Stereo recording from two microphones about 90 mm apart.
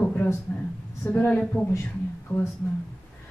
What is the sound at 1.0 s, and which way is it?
Speech, 15° left (ahead or behind).